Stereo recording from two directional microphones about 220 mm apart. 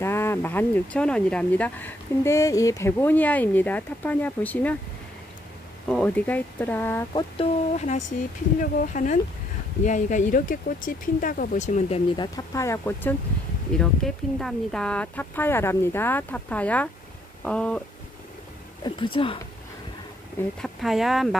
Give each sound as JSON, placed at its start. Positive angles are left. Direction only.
{"t": 0.0, "sound": "speech", "side_deg": 10}
{"t": 5.9, "sound": "speech", "side_deg": 5}
{"t": 7.3, "sound": "speech", "side_deg": 30}
{"t": 12.2, "sound": "speech", "side_deg": 15}
{"t": 18.9, "sound": "speech", "side_deg": 20}
{"t": 20.6, "sound": "speech", "side_deg": 0}